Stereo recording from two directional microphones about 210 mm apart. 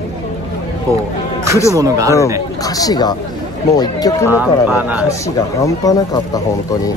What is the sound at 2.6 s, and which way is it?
Speech, 15° left (ahead or behind).